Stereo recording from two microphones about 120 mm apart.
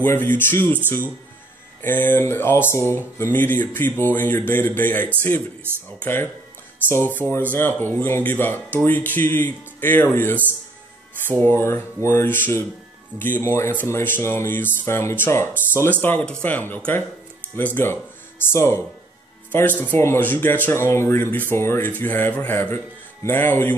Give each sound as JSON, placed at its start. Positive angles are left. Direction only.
{"t": 0.0, "sound": "speech", "side_deg": 15}
{"t": 1.8, "sound": "speech", "side_deg": 15}
{"t": 11.3, "sound": "a sound", "side_deg": 20}
{"t": 13.2, "sound": "speech", "side_deg": 15}
{"t": 18.4, "sound": "a sound", "side_deg": 20}
{"t": 19.8, "sound": "speech", "side_deg": 15}